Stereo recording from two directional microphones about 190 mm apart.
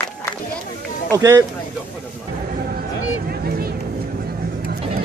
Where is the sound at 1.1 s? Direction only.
15° right (ahead or behind).